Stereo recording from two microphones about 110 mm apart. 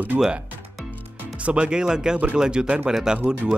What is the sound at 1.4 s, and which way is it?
Speech, 10° right (ahead or behind).